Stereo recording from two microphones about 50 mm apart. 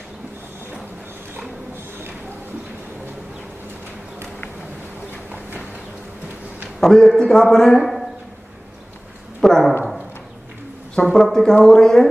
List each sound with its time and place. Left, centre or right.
6.8 s a man's voice: centre
9.4 s a sound: centre
11.0 s speech: centre